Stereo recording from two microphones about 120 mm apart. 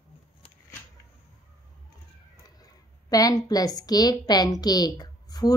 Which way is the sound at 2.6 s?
30° left (ahead or behind).